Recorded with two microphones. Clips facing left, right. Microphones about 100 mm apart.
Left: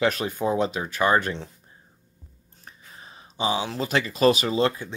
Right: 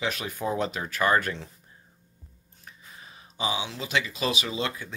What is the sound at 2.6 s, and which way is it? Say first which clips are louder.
Speech: left 2 dB; 35° left (ahead or behind).